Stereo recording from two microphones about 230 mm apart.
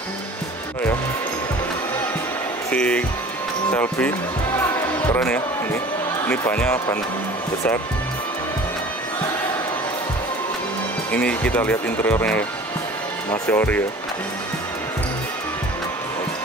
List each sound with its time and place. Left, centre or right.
2.7 s speech: centre
4.6 s music: centre
6.2 s speech: centre
11.1 s speech: centre